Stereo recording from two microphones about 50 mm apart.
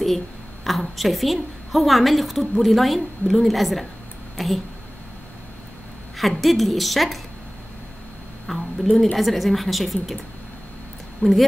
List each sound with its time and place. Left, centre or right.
0.7 s a woman's voice: centre
6.1 s a woman's voice: centre
8.5 s a woman's voice: centre
11.2 s speech: left